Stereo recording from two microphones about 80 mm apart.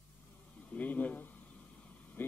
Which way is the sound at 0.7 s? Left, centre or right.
Centre.